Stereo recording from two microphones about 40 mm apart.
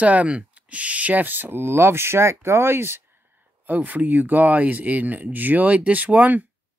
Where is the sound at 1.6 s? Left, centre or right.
Right.